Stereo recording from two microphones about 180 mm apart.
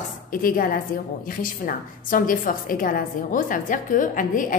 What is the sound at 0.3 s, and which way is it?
A woman's voice, 50° left (ahead or behind).